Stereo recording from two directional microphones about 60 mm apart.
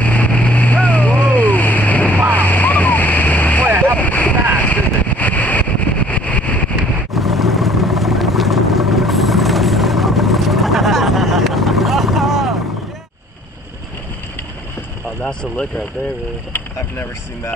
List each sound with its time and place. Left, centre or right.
0.0 s vehicle: left
3.6 s vehicle: right
3.9 s vehicle: left
7.1 s vehicle: centre